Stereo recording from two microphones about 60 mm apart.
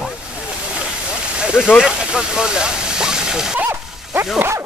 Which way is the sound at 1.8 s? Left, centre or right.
Centre.